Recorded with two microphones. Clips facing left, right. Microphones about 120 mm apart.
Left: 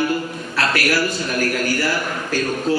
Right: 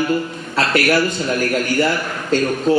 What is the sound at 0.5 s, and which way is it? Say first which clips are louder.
A man's voice: right 4 dB; 25° right (ahead or behind).